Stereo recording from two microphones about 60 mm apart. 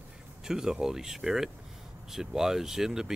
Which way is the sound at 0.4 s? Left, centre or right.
Centre.